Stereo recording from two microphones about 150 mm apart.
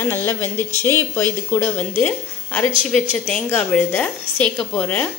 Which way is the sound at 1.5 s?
15° left (ahead or behind).